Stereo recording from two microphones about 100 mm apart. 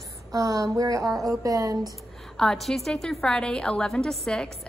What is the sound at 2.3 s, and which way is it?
A woman's voice, 5° left (ahead or behind).